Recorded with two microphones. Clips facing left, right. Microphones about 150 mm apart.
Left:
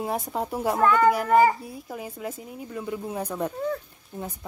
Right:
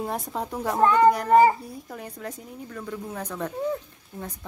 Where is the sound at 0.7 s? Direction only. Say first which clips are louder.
Right 2 dB; 30° right (ahead or behind).